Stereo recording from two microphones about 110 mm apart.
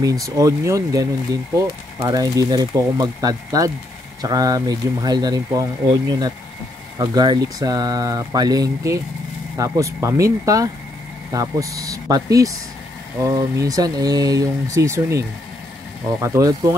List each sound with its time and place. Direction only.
0.0 s speech: 35° right (ahead or behind)